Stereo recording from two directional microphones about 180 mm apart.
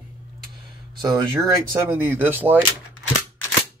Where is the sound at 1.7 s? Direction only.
15° right (ahead or behind).